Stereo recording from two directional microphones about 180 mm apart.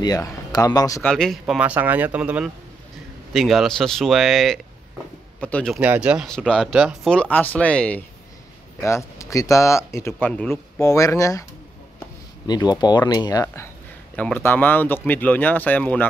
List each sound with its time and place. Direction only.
0.0 s speech: 20° left (ahead or behind)
1.0 s speech: 5° left (ahead or behind)
1.4 s speech: 10° right (ahead or behind)
5.8 s speech: 10° right (ahead or behind); by 11.4 s 15° left (ahead or behind)
12.4 s speech: 20° left (ahead or behind)
14.1 s speech: 10° left (ahead or behind)